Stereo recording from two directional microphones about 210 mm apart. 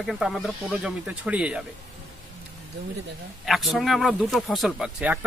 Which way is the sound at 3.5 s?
Centre (ahead or behind).